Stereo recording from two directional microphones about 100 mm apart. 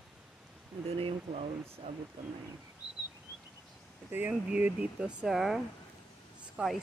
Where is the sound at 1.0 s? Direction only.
70° right (ahead or behind).